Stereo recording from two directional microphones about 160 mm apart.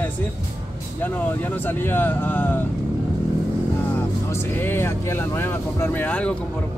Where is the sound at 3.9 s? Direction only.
15° left (ahead or behind).